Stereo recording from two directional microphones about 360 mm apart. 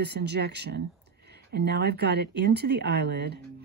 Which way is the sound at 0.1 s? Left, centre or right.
Right.